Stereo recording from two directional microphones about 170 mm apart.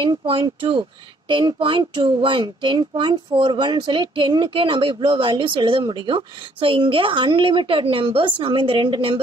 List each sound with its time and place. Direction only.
0.0 s a child's voice: 30° right (ahead or behind)